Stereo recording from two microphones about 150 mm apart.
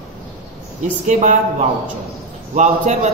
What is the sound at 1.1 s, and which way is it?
Speech, 50° right (ahead or behind).